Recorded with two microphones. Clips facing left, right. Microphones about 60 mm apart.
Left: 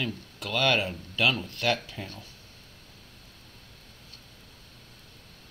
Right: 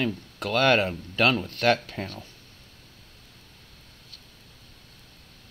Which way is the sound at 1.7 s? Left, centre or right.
Right.